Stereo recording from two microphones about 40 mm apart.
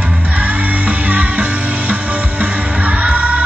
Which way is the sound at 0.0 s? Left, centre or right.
Right.